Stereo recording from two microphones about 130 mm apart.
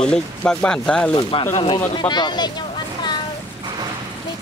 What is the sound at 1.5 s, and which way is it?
Speech, 45° left (ahead or behind).